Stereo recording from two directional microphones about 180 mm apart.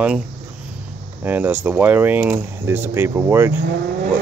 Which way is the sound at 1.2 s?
10° right (ahead or behind).